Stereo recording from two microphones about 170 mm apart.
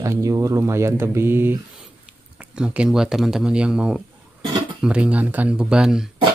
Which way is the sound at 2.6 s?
5° right (ahead or behind).